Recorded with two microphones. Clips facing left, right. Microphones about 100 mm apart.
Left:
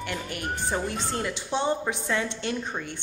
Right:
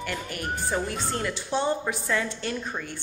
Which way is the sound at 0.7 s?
20° left (ahead or behind).